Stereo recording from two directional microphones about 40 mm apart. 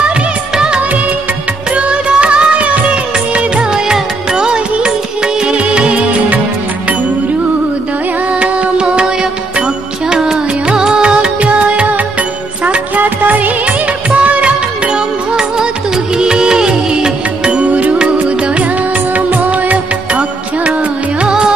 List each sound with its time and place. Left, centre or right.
1.8 s music: right
8.3 s music: right
14.1 s music of bollywood: right
14.9 s music: centre
17.6 s music: right
19.1 s music: right
21.2 s music: right